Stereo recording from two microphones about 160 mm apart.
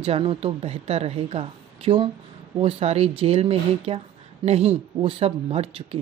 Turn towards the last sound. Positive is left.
turn(degrees=-40)  # may be behind; listen again after turning